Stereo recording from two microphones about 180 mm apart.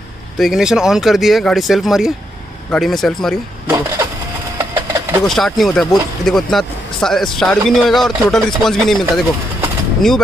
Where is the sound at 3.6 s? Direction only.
20° right (ahead or behind).